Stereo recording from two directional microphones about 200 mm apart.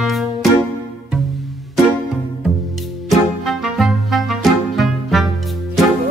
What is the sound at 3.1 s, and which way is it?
Music, centre (ahead or behind).